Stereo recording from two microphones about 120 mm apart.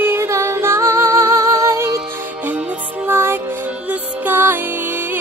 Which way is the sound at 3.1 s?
20° right (ahead or behind).